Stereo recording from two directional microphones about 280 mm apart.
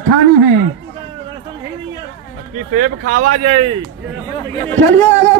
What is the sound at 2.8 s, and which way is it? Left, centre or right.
Speech, right.